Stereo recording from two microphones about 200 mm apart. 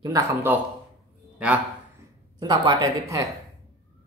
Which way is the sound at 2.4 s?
20° right (ahead or behind).